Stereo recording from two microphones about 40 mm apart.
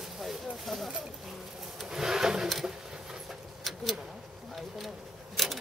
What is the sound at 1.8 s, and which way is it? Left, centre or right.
Wood, centre.